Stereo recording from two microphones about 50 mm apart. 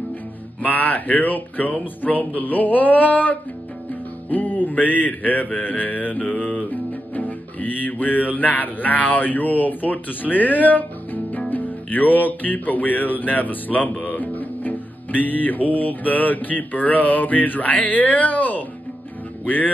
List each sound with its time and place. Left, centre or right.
0.6 s music: left
4.3 s speech: left
11.5 s music: left